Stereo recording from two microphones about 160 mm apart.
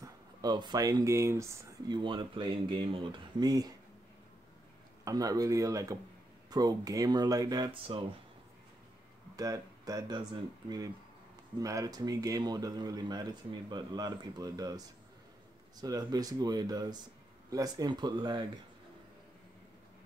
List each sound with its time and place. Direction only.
0.0 s speech: 25° right (ahead or behind)
2.0 s speech: 30° right (ahead or behind)
5.0 s speech: 20° right (ahead or behind)
9.4 s speech: 20° right (ahead or behind)
15.8 s speech: 25° right (ahead or behind)